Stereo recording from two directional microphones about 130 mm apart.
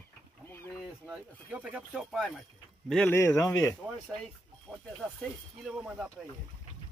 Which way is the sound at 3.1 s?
25° left (ahead or behind).